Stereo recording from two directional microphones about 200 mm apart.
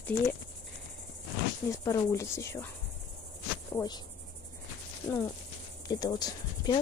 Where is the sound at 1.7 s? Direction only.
15° left (ahead or behind).